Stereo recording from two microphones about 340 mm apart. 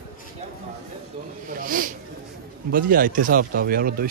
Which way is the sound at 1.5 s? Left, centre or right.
Right.